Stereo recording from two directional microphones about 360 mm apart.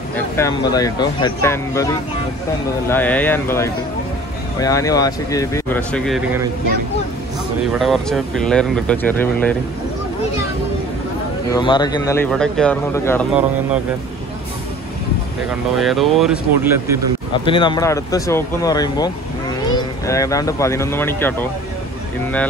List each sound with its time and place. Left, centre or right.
0.4 s speech: centre
2.9 s speech: centre
7.7 s speech: centre
11.5 s speech: centre
15.7 s speech: centre
17.3 s speech: centre